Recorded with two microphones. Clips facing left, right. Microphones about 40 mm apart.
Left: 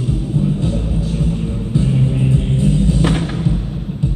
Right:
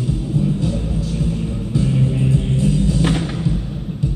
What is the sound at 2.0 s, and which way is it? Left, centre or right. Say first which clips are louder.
Music: left 1 dB; centre.